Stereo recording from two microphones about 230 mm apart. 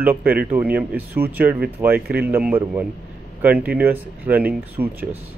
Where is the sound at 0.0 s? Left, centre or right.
Centre.